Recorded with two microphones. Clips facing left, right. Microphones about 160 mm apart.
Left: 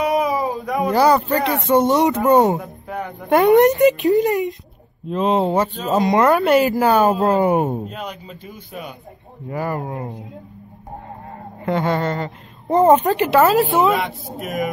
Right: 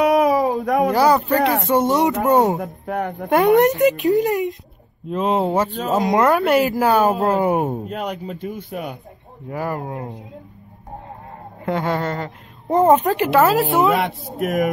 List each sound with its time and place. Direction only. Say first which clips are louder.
0.0 s a sound: right 4 dB; 70° right (ahead or behind)
0.9 s a woman's voice: left 4 dB; centre (ahead or behind)
2.6 s speech: right 4 dB; 55° right (ahead or behind)
3.3 s a woman's voice: left 2 dB; centre (ahead or behind)
7.9 s a man's voice: right 5 dB; 65° right (ahead or behind)
9.5 s a woman's voice: left 1 dB; centre (ahead or behind)
11.6 s a woman's voice: left 2 dB; centre (ahead or behind)
13.9 s a man's voice: right 2 dB; 65° right (ahead or behind)